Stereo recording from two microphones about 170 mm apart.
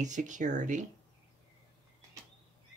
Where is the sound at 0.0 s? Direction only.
45° right (ahead or behind).